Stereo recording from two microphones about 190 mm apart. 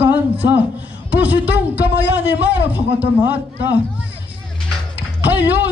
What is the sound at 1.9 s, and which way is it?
Speech, 65° left (ahead or behind).